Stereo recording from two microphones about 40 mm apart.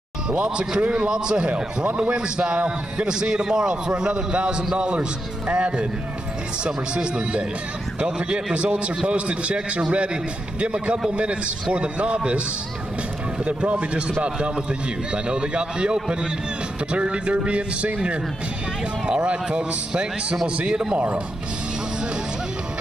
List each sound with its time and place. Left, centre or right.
0.4 s a man's voice: right
13.5 s a man's voice: right